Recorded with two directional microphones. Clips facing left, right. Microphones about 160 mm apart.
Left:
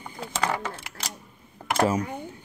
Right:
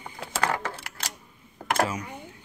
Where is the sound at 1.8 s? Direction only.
45° left (ahead or behind).